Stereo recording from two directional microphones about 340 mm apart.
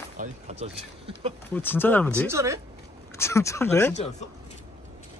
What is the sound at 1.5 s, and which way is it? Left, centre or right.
Speech, centre.